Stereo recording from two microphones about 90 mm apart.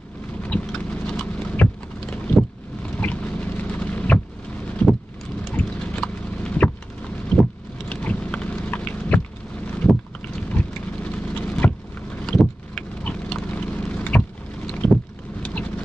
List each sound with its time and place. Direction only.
0.4 s a sound: 15° left (ahead or behind)
5.5 s clip-clop: 15° left (ahead or behind)
7.3 s vehicle: 10° left (ahead or behind)
7.9 s boat: 15° left (ahead or behind)
9.8 s vehicle: 15° left (ahead or behind)
12.3 s vehicle: 5° left (ahead or behind)
13.0 s clip-clop: 10° left (ahead or behind)
13.5 s a sound: 15° left (ahead or behind)
14.8 s vehicle: 10° left (ahead or behind)